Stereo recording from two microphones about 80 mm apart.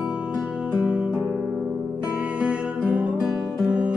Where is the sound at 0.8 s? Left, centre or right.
Centre.